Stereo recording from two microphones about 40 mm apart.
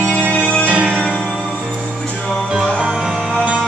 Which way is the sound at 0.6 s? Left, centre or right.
Right.